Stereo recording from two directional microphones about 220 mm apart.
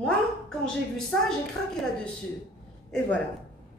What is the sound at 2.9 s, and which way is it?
Speech, 5° left (ahead or behind).